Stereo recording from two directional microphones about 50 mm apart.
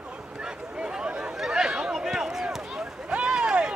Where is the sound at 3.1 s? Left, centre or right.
Centre.